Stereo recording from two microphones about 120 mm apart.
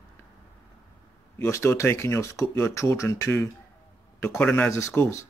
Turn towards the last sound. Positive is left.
turn(degrees=20)  # may be behind; listen again after turning